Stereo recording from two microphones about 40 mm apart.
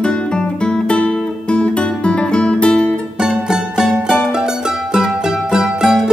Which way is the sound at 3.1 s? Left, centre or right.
Centre.